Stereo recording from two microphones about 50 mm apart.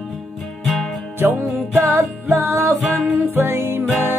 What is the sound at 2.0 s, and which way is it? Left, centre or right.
Music, right.